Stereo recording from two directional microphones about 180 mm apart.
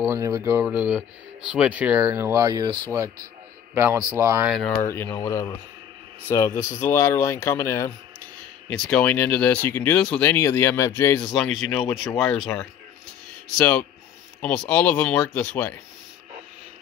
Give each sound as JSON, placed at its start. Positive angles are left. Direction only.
{"t": 0.0, "sound": "speech", "side_deg": -15}
{"t": 4.7, "sound": "speech", "side_deg": 10}
{"t": 11.2, "sound": "speech", "side_deg": 5}
{"t": 13.6, "sound": "speech", "side_deg": 5}